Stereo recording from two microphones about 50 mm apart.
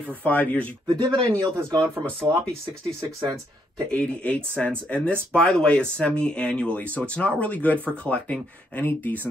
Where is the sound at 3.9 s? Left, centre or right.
Left.